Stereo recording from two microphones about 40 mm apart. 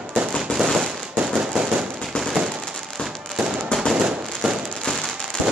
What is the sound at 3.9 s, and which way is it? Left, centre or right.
Fireworks, centre.